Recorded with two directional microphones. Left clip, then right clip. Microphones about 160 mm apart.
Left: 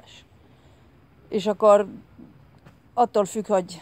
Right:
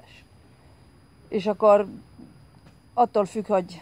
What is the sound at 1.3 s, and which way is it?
Speech, 15° left (ahead or behind).